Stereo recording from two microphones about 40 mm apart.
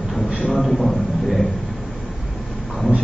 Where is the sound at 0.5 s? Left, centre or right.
Centre.